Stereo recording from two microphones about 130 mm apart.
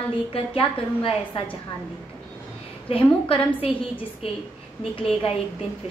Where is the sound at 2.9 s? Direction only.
45° left (ahead or behind).